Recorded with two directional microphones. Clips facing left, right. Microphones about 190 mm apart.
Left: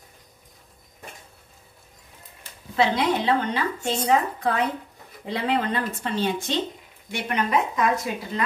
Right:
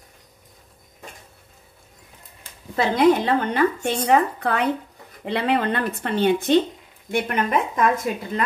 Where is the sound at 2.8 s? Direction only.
55° right (ahead or behind).